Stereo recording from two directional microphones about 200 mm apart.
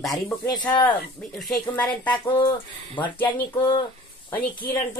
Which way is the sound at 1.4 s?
5° left (ahead or behind).